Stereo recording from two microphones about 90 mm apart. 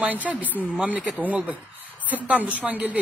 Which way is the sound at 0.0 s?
15° right (ahead or behind).